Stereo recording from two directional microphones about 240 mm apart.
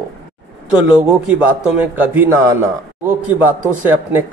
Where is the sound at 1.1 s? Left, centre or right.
Centre.